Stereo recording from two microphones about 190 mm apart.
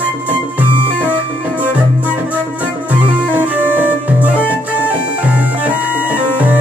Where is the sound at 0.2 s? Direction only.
10° right (ahead or behind).